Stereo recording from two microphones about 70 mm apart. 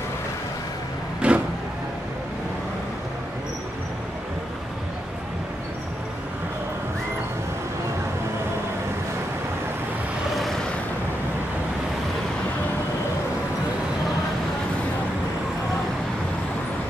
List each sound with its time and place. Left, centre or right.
1.2 s vehicle: centre